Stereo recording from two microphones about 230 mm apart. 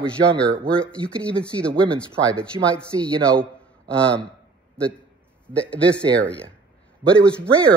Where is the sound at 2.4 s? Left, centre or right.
Centre.